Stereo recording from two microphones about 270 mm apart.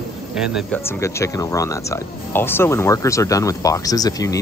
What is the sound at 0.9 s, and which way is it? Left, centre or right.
Speech, centre.